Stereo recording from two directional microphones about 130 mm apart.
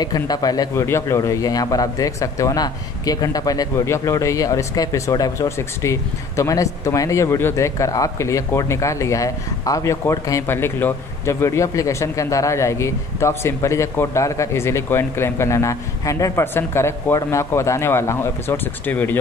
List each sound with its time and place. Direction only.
0.0 s a man's voice: 30° left (ahead or behind); by 19.1 s 15° left (ahead or behind)